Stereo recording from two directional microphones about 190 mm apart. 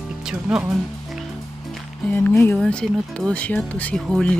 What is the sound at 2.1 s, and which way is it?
Speech, 10° left (ahead or behind).